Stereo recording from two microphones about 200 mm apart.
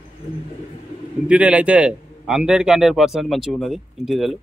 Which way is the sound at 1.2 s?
5° right (ahead or behind).